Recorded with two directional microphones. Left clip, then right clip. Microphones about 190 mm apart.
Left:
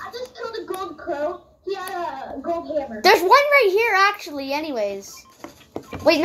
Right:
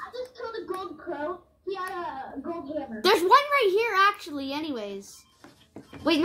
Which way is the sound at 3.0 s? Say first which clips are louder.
Left 6 dB; 45° right (ahead or behind).